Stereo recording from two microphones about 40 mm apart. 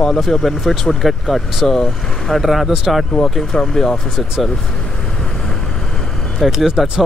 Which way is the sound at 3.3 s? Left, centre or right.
Centre.